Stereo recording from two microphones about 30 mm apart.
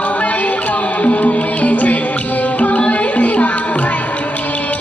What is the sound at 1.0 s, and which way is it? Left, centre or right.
Music, left.